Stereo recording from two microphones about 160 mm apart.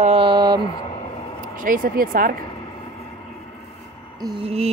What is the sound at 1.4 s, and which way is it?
Speech, 60° right (ahead or behind).